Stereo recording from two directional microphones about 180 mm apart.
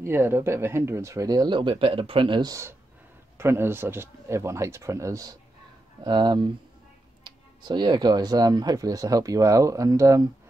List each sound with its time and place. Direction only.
0.0 s speech: 15° right (ahead or behind)